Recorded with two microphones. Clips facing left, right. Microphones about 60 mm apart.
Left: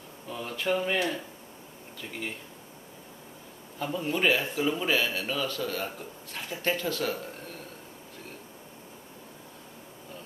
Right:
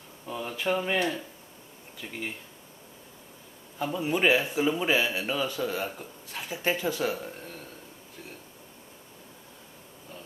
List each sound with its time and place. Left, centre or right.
0.3 s speech: centre
3.8 s speech: centre